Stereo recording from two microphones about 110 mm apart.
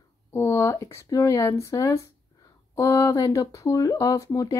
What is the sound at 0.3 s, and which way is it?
Speech, 25° left (ahead or behind).